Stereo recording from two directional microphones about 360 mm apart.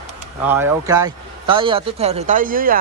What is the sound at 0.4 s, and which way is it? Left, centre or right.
Speech, centre.